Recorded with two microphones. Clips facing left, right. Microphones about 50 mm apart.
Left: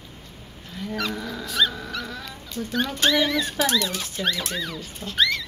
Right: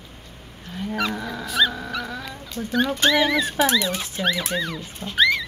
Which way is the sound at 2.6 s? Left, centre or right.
Centre.